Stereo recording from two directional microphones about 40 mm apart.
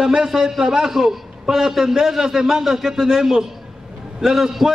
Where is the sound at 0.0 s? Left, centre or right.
Centre.